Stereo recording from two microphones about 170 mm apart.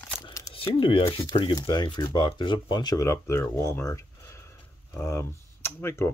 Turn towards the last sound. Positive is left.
turn(degrees=15)  # may be behind; listen again after turning